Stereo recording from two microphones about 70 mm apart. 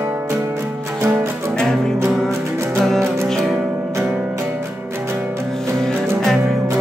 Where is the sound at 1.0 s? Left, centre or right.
Right.